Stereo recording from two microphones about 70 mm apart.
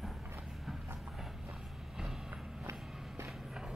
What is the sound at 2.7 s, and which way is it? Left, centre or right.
Walk, right.